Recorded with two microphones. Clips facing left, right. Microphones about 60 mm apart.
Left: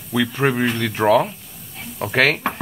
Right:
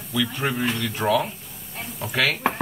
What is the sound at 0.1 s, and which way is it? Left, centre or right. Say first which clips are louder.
Speech: left 6 dB; left.